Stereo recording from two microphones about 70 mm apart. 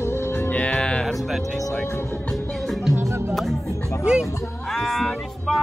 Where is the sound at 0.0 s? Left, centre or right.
Left.